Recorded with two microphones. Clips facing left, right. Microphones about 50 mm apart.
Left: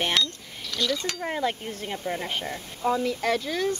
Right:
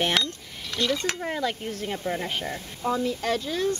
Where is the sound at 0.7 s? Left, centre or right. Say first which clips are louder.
Right 2 dB; right.